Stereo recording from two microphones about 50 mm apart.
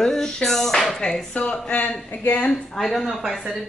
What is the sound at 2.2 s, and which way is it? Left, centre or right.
Speech, left.